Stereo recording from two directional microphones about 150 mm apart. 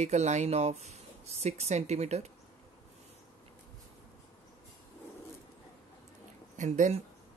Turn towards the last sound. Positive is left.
turn(degrees=-50)  # may be behind; listen again after turning